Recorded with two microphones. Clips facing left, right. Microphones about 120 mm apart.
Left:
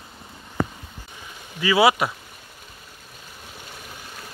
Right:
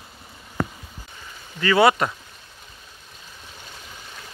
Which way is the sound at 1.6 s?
5° left (ahead or behind).